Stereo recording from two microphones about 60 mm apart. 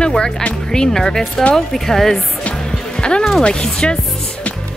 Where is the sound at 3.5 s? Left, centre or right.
Centre.